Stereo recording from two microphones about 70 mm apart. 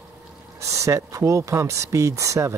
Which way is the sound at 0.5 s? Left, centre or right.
Right.